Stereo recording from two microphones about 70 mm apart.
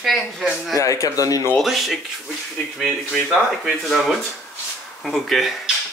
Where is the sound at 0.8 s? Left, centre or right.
Left.